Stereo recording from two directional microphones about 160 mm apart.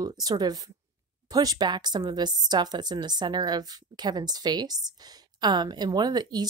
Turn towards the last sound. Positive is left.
turn(degrees=-25)  # may be behind; listen again after turning